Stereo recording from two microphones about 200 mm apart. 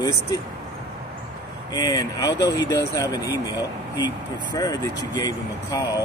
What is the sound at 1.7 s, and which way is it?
Speech, 20° left (ahead or behind).